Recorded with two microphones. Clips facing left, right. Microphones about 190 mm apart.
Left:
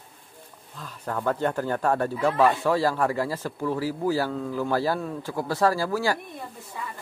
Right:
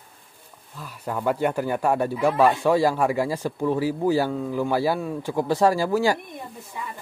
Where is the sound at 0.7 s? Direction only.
10° right (ahead or behind).